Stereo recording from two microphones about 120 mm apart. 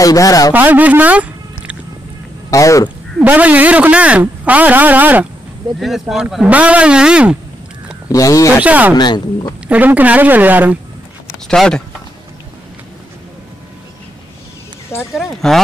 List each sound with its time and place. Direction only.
0.0 s speech: 30° left (ahead or behind)
0.5 s speech: 15° right (ahead or behind)
2.5 s speech: 25° left (ahead or behind)
3.2 s speech: 15° right (ahead or behind)
5.8 s speech: centre (ahead or behind)
8.1 s speech: 25° left (ahead or behind)
8.6 s speech: 15° right (ahead or behind)
8.9 s speech: 40° left (ahead or behind)
9.7 s speech: 15° right (ahead or behind)
11.4 s speech: 5° left (ahead or behind)
15.1 s speech: centre (ahead or behind)